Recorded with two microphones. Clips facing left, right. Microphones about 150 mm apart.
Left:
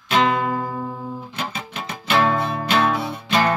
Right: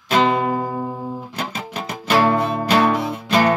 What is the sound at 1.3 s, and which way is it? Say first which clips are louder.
Music: right 2 dB; 35° right (ahead or behind).